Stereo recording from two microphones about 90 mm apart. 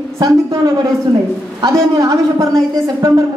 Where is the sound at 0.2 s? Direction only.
45° right (ahead or behind).